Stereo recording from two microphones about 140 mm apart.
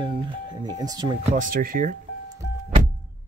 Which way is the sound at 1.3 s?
70° right (ahead or behind).